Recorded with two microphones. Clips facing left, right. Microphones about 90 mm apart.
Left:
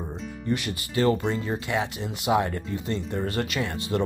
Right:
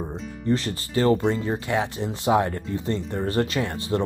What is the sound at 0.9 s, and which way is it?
Speech, 30° right (ahead or behind).